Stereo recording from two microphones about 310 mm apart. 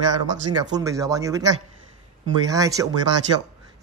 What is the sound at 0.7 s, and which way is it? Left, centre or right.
Speech, centre.